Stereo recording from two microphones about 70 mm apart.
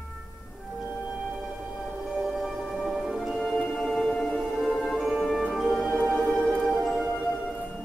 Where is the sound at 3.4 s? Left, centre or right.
Centre.